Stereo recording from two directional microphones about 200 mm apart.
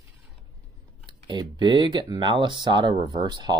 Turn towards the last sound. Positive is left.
turn(degrees=-20)  # may be behind; listen again after turning